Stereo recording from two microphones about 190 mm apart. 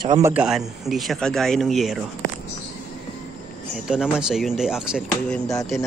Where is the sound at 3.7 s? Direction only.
5° right (ahead or behind).